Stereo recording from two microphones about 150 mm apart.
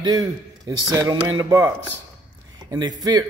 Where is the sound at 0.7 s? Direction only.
20° right (ahead or behind).